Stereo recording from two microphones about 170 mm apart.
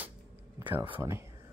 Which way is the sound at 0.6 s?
10° right (ahead or behind).